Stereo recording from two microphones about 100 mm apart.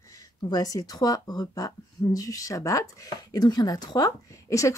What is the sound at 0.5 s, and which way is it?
Speech, 40° left (ahead or behind).